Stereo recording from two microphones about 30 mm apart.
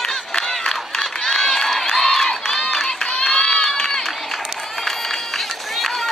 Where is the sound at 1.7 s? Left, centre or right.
Centre.